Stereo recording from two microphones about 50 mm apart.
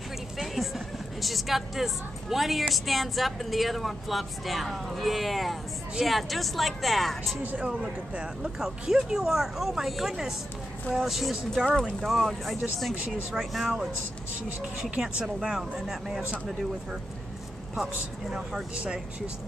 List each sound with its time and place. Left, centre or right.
0.4 s speech: centre
7.5 s speech: right; by 13.7 s centre
15.0 s speech: centre
18.3 s speech: centre